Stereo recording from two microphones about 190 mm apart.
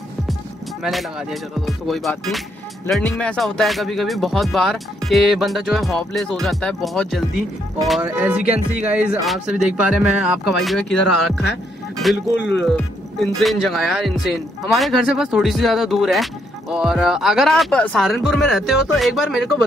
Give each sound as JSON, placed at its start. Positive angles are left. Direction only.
{"t": 0.8, "sound": "speech", "side_deg": 0}
{"t": 8.0, "sound": "music", "side_deg": -10}
{"t": 8.8, "sound": "speech", "side_deg": -10}
{"t": 12.4, "sound": "speech", "side_deg": 70}
{"t": 12.6, "sound": "speech", "side_deg": 5}